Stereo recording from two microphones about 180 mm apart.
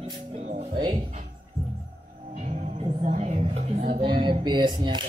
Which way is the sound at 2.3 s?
40° right (ahead or behind).